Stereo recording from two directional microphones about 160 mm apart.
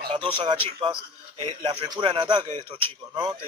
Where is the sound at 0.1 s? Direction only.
30° right (ahead or behind).